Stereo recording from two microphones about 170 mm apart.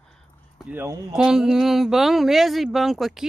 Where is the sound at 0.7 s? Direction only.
15° right (ahead or behind).